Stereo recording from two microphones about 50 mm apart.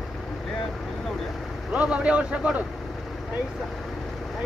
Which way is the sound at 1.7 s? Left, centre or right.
Right.